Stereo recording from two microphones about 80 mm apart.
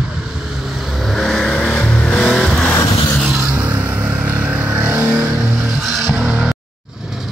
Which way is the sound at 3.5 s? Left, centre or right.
Centre.